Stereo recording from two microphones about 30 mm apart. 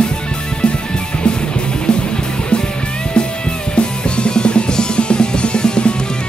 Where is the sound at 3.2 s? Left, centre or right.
Left.